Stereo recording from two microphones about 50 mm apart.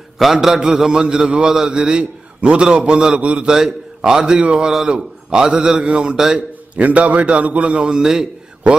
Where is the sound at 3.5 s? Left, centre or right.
Centre.